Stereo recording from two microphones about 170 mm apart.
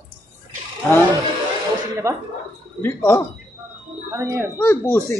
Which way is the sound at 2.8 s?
10° left (ahead or behind).